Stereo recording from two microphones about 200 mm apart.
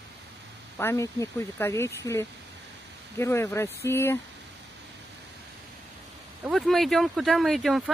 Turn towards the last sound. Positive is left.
turn(degrees=0)  # may be behind; listen again after turning